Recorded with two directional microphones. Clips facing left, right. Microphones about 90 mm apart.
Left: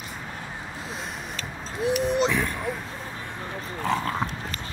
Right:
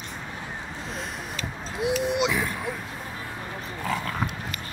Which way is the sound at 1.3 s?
35° left (ahead or behind).